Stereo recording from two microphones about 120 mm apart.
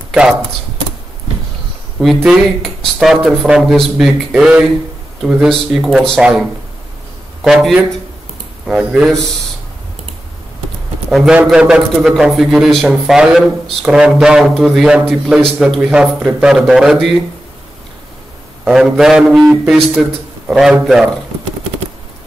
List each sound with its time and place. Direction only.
0.1 s speech: 5° right (ahead or behind)
2.2 s a man's voice: centre (ahead or behind)
11.1 s a man's voice: centre (ahead or behind)
18.6 s a man's voice: 5° right (ahead or behind)